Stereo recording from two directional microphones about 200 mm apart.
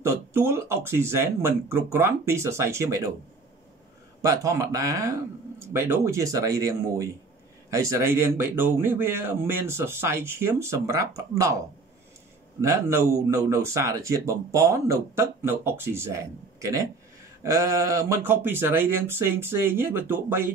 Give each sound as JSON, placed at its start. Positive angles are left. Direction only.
{"t": 0.0, "sound": "a man's voice", "side_deg": -10}
{"t": 4.2, "sound": "a man's voice", "side_deg": -15}
{"t": 12.6, "sound": "a man's voice", "side_deg": -15}